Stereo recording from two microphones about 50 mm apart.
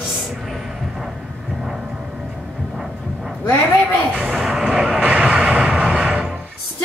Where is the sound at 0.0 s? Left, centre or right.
Centre.